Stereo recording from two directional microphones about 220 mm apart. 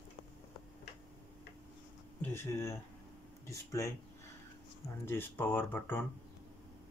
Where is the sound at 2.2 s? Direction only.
10° left (ahead or behind).